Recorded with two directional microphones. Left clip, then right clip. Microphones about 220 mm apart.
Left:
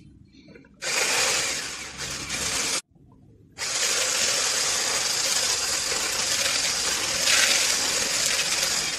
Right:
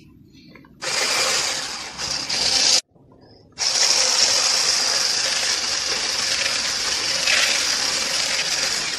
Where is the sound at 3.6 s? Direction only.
Centre (ahead or behind).